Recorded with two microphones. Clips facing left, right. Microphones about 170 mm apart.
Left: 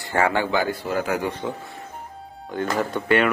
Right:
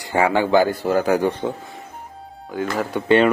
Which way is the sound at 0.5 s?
45° right (ahead or behind).